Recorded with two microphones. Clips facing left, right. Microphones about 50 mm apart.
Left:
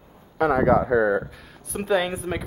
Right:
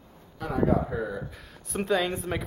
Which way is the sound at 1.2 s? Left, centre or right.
Centre.